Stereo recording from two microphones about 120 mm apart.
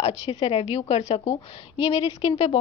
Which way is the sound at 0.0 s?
60° left (ahead or behind).